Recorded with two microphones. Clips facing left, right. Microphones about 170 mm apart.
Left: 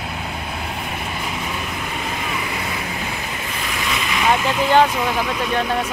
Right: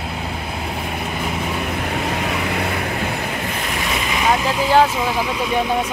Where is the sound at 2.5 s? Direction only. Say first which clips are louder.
Right 5 dB; 65° right (ahead or behind).